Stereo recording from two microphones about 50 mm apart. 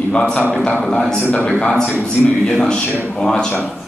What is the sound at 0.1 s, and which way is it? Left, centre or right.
A man's voice, centre.